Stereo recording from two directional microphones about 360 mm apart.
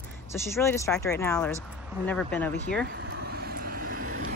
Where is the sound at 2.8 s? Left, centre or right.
Right.